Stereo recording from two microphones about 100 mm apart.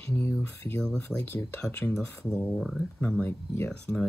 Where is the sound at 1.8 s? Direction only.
5° left (ahead or behind).